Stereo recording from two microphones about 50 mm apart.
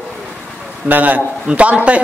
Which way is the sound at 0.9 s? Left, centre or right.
Right.